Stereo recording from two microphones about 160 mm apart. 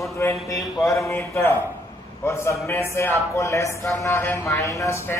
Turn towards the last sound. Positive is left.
turn(degrees=15)  # may be behind; listen again after turning